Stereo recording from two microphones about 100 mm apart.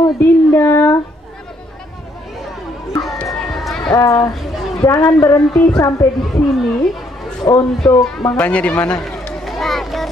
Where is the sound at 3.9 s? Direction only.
35° left (ahead or behind).